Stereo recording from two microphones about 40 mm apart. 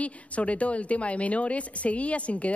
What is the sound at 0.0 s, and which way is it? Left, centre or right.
Speech, left.